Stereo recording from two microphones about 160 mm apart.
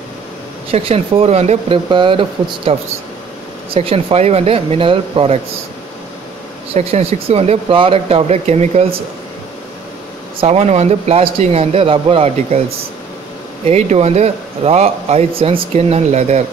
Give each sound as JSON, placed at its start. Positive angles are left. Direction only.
{"t": 0.7, "sound": "a man's voice", "side_deg": -40}
{"t": 1.9, "sound": "a man's voice", "side_deg": -30}
{"t": 3.7, "sound": "a man's voice", "side_deg": -35}
{"t": 6.7, "sound": "a man's voice", "side_deg": -40}
{"t": 10.4, "sound": "a man's voice", "side_deg": -40}
{"t": 13.7, "sound": "a man's voice", "side_deg": -40}